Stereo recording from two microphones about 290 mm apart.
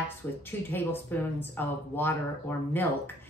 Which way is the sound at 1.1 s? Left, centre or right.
Centre.